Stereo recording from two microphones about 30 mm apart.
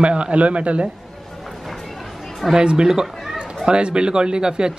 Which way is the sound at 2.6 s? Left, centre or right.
Right.